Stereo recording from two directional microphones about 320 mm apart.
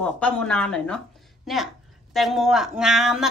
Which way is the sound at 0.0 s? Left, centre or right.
Centre.